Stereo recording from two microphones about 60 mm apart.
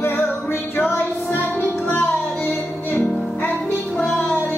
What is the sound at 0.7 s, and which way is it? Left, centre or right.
Child singing, left.